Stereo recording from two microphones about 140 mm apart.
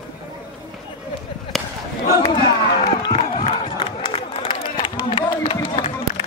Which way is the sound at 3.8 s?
40° left (ahead or behind).